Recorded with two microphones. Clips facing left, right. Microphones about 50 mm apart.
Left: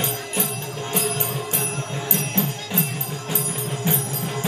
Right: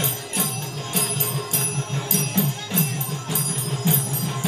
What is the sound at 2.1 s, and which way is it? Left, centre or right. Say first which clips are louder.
Music: right 1 dB; left.